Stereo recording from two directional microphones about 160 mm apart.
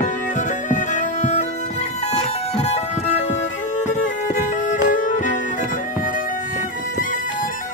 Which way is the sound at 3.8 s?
55° left (ahead or behind).